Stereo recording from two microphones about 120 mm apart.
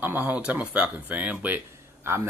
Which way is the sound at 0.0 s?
15° right (ahead or behind).